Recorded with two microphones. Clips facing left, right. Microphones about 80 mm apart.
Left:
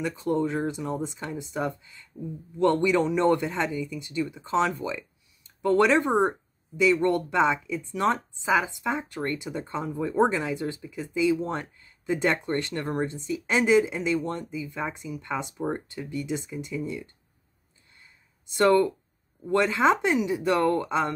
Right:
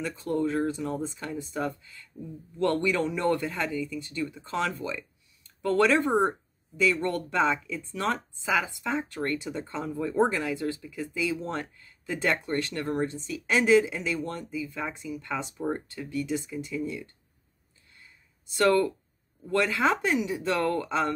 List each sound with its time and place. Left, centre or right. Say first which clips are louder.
0.0 s speech: left 2 dB; centre
18.6 s speech: left 2 dB; left